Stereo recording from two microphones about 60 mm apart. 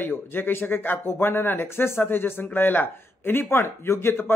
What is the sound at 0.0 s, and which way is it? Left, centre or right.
Speech, left.